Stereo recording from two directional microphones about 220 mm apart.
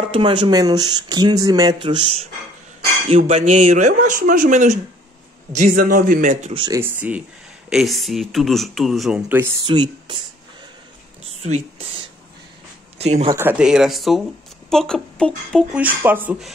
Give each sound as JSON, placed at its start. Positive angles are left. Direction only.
{"t": 0.0, "sound": "speech", "side_deg": -25}
{"t": 6.8, "sound": "speech", "side_deg": -5}
{"t": 11.4, "sound": "speech", "side_deg": -30}
{"t": 13.0, "sound": "speech", "side_deg": -30}
{"t": 13.3, "sound": "speech", "side_deg": -10}
{"t": 15.8, "sound": "speech", "side_deg": -10}